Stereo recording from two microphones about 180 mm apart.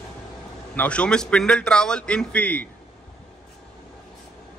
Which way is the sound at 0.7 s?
5° left (ahead or behind).